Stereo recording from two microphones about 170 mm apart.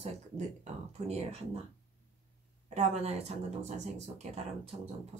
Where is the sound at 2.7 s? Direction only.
40° right (ahead or behind).